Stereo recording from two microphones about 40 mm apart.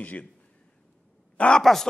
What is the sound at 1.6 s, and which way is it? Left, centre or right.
Speech, centre.